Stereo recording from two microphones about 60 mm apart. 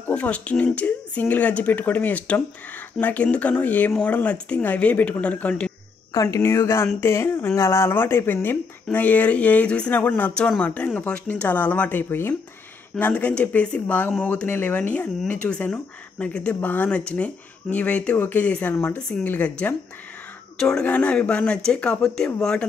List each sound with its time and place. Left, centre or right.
0.1 s speech: left
6.1 s speech: left
6.4 s speech: left
7.6 s speech: left
8.9 s speech: left
13.0 s speech: left
16.6 s speech: left
16.9 s speech: left
20.5 s speech: centre
20.8 s speech: left; by 22.7 s centre